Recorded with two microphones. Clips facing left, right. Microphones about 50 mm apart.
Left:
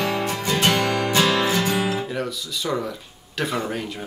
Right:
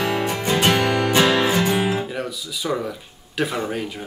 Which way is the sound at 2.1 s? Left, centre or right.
Centre.